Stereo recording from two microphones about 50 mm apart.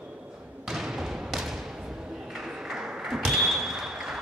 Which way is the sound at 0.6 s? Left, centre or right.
Centre.